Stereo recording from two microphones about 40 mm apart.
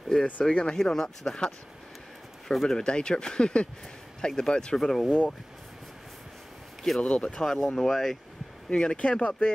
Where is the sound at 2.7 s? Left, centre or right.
Left.